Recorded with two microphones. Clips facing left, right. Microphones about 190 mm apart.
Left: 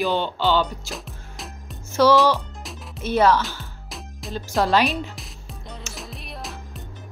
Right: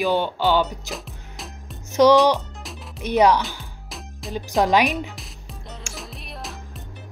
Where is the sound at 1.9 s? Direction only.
15° right (ahead or behind).